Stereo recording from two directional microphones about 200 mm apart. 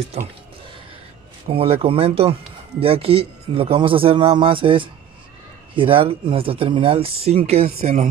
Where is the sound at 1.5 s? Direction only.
30° right (ahead or behind).